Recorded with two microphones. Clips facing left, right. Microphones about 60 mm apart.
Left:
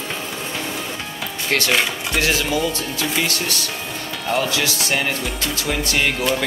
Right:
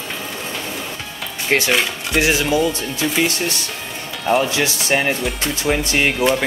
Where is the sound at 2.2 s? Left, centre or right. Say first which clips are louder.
Right 4 dB; centre.